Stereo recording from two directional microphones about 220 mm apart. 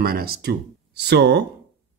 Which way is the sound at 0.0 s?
45° right (ahead or behind).